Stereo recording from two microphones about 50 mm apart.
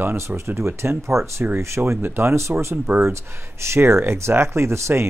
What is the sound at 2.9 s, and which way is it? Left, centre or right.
Speech, right.